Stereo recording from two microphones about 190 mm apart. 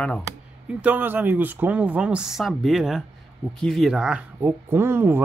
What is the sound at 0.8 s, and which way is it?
Speech, 10° right (ahead or behind).